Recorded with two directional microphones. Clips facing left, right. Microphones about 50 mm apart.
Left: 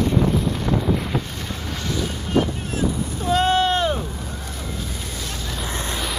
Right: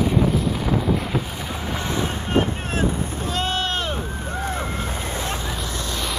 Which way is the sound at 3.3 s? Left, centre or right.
Centre.